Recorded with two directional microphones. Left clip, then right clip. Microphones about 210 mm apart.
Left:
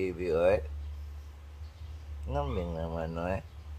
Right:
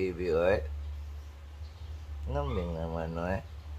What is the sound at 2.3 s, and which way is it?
Speech, 5° left (ahead or behind).